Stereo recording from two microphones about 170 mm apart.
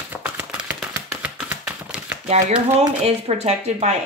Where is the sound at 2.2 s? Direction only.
40° right (ahead or behind).